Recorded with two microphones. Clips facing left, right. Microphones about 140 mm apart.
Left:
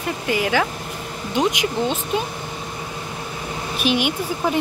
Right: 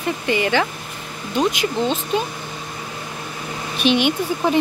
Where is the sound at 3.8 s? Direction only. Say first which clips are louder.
Right 3 dB; 5° left (ahead or behind).